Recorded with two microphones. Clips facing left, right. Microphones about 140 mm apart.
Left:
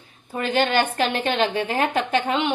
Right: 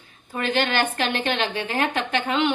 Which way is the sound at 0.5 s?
40° left (ahead or behind).